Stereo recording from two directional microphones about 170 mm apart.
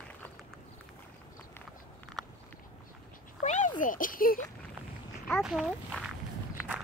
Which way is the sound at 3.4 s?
45° left (ahead or behind).